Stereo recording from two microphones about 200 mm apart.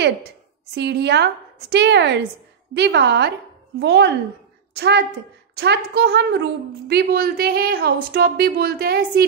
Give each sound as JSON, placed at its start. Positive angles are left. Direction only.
{"t": 0.7, "sound": "a woman's voice", "side_deg": -55}